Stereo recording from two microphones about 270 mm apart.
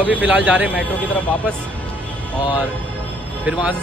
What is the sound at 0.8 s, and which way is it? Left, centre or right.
Speech, centre.